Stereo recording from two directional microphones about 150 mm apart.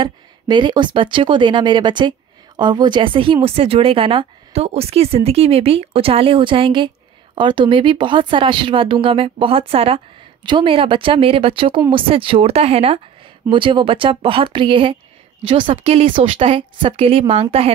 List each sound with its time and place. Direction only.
0.0 s speech: 30° right (ahead or behind)